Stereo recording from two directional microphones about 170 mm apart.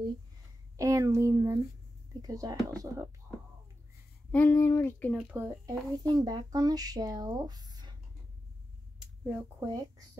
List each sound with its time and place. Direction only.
0.7 s a child's voice: 20° right (ahead or behind)
4.3 s speech: 10° left (ahead or behind)
5.1 s a child's voice: 10° right (ahead or behind)
5.7 s speech: 20° right (ahead or behind)
9.0 s speech: 15° right (ahead or behind)